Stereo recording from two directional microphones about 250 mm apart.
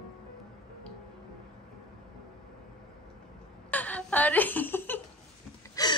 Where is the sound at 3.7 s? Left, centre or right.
Centre.